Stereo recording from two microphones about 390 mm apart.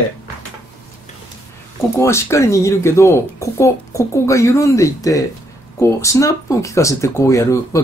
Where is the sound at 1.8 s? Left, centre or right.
Centre.